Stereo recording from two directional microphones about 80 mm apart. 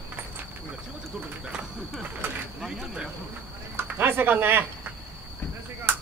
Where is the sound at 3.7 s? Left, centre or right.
Right.